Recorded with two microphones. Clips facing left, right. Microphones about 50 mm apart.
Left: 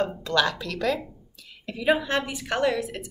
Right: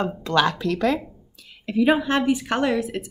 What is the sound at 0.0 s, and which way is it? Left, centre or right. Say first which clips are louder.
A woman's voice: right 3 dB; right.